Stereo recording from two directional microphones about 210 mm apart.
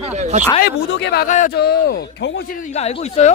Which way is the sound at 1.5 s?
50° left (ahead or behind).